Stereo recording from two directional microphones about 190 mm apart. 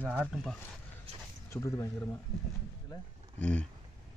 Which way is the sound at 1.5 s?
15° left (ahead or behind).